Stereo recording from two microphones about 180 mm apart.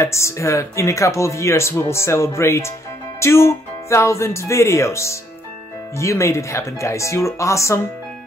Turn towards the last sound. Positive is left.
turn(degrees=15)  # may be behind; listen again after turning